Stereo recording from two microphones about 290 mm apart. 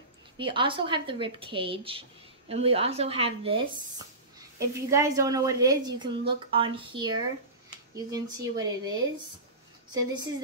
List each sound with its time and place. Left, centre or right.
0.4 s speech: centre
9.9 s speech: centre